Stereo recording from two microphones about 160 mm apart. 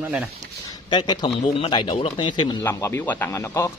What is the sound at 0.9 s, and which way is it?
Speech, 25° left (ahead or behind).